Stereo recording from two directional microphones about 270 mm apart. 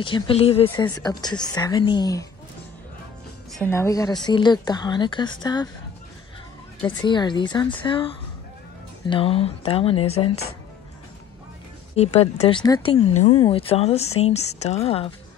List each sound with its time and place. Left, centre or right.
0.0 s speech: centre
0.7 s a woman's voice: centre
3.5 s a woman's voice: centre
7.0 s a woman's voice: centre
9.1 s speech: left
11.9 s speech: left